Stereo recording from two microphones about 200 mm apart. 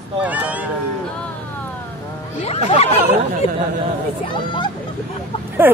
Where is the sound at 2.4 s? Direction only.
30° left (ahead or behind).